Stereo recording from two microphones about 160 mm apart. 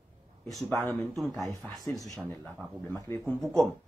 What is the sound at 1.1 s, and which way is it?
Speech, centre (ahead or behind).